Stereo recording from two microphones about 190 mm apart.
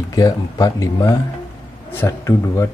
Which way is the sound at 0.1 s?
20° left (ahead or behind).